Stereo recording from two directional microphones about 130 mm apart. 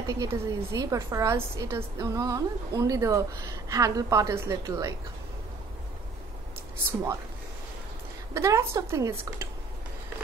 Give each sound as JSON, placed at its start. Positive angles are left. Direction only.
{"t": 0.1, "sound": "a woman's voice", "side_deg": -25}
{"t": 8.4, "sound": "a woman's voice", "side_deg": -20}